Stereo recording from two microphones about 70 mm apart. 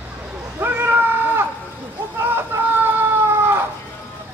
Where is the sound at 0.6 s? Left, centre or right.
Right.